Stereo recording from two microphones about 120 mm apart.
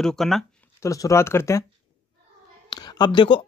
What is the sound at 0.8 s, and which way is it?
Speech, 25° left (ahead or behind).